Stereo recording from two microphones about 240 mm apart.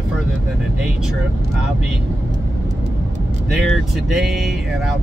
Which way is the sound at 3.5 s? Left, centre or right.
Centre.